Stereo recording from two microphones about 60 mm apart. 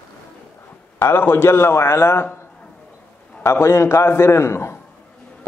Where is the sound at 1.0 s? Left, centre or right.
Left.